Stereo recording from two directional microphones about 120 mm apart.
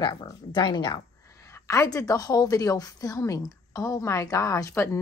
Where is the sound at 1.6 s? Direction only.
25° left (ahead or behind).